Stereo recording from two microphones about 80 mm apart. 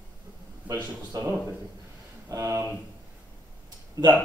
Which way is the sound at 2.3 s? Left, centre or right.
Right.